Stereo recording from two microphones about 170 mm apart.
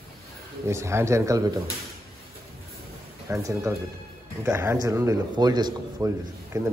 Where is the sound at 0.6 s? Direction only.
15° right (ahead or behind).